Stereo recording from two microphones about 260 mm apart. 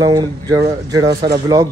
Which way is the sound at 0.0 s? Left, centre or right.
Centre.